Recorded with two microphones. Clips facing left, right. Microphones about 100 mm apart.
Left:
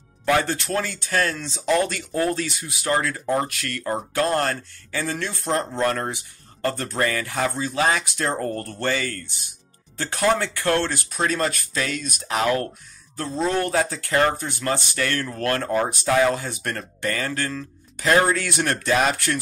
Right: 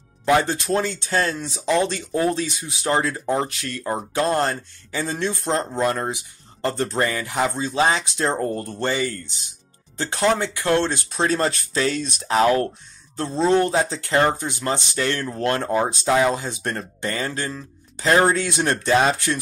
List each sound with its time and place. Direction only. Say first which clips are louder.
0.2 s speech: right 2 dB; 20° right (ahead or behind)